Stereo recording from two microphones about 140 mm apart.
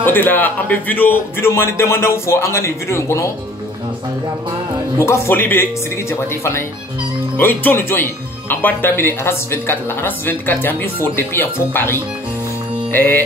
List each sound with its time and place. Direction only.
0.0 s speech: 15° left (ahead or behind)
4.9 s speech: 20° left (ahead or behind)